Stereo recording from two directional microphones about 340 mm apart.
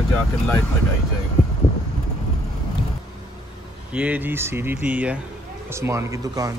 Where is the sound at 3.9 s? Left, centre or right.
Centre.